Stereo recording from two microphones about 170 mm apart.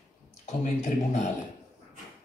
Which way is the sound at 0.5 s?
45° left (ahead or behind).